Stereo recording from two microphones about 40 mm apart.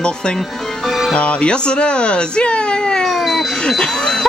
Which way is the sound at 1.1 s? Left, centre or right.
Left.